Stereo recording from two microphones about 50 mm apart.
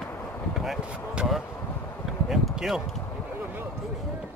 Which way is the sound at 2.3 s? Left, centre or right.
Centre.